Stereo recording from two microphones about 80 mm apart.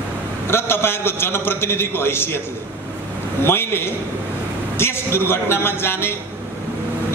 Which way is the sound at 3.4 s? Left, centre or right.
Left.